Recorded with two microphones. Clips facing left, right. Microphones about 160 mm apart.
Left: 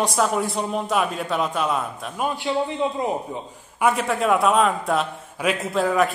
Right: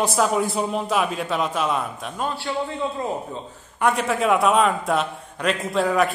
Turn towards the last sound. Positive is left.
turn(degrees=0)  # may be behind; listen again after turning